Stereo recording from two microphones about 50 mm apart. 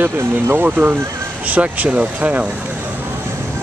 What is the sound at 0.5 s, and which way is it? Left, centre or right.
Speech, right.